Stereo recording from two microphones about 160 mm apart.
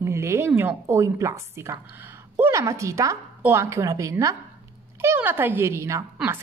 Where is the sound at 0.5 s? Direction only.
15° right (ahead or behind).